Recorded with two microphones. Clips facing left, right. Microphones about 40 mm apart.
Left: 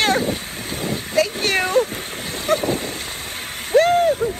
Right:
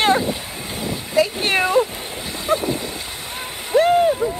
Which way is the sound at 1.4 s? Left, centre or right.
Right.